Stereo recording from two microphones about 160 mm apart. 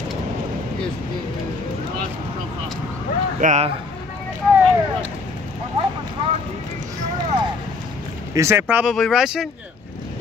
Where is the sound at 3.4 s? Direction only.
50° right (ahead or behind).